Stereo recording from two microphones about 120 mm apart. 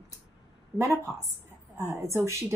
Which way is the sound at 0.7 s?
25° right (ahead or behind).